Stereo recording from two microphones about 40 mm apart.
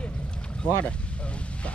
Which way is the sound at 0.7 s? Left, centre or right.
Left.